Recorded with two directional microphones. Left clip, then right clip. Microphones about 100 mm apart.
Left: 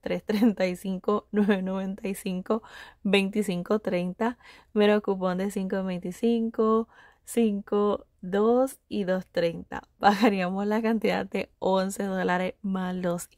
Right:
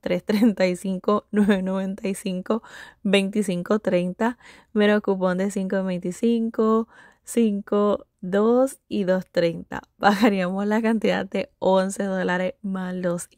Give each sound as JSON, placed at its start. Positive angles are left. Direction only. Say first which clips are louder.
{"t": 0.0, "sound": "speech", "louder": "right 4 dB", "side_deg": -45}